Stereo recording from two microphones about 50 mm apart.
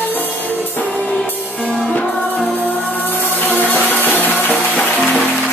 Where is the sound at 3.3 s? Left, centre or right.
Left.